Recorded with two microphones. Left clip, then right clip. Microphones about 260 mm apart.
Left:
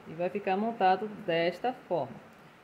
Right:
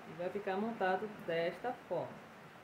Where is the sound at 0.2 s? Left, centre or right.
Left.